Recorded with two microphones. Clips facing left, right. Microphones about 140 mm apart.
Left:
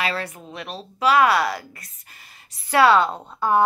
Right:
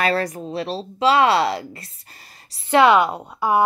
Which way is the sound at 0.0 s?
40° right (ahead or behind).